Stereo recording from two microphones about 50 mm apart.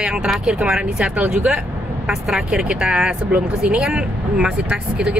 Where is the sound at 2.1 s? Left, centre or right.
Centre.